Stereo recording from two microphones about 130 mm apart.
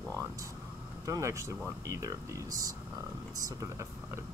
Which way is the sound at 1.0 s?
25° right (ahead or behind).